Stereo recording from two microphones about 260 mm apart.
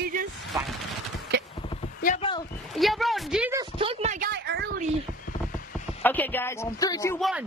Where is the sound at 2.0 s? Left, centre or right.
Left.